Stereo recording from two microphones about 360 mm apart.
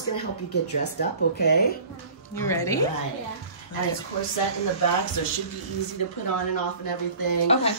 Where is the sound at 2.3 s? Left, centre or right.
Centre.